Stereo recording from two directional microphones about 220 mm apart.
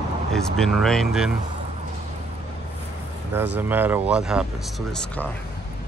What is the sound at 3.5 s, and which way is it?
Speech, 10° right (ahead or behind).